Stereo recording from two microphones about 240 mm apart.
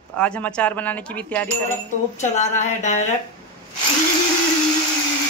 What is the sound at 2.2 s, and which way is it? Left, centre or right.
Speech, left.